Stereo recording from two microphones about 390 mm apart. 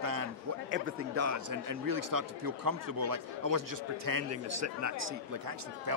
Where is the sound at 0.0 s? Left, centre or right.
Right.